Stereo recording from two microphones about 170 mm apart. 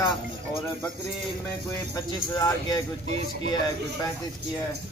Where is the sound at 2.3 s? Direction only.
25° left (ahead or behind).